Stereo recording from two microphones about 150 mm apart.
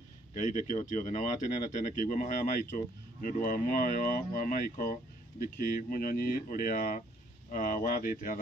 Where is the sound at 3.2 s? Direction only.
65° left (ahead or behind).